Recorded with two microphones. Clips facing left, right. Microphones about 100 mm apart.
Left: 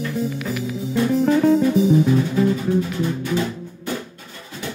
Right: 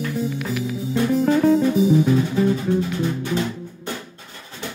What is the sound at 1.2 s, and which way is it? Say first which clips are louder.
Music: left 1 dB; centre (ahead or behind).